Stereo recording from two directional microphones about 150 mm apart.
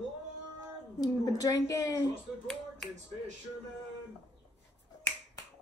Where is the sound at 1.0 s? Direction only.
25° left (ahead or behind).